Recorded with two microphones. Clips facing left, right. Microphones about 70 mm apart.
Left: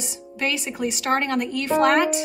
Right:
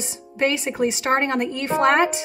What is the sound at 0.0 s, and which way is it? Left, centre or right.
A woman's voice, right.